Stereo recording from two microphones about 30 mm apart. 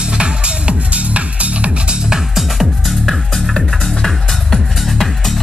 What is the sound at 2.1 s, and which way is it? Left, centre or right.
Music, centre.